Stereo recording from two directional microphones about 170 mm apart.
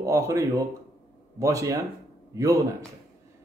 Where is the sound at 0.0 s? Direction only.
20° right (ahead or behind).